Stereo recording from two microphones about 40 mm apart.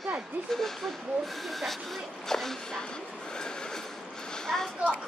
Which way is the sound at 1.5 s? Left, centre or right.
Centre.